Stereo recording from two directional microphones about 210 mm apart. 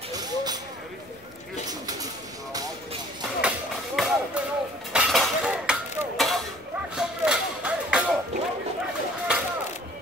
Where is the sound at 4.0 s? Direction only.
Centre (ahead or behind).